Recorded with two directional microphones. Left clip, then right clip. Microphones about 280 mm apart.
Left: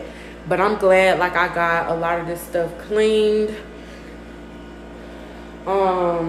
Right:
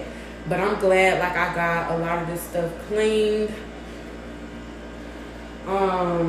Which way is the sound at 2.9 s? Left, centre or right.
Centre.